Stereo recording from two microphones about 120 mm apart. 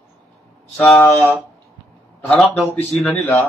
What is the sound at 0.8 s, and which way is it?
Speech, 15° left (ahead or behind).